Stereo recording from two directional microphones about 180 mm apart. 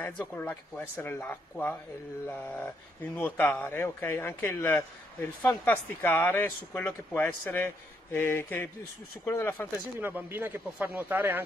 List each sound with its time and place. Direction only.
0.0 s speech: 10° left (ahead or behind)
9.9 s speech: 10° right (ahead or behind)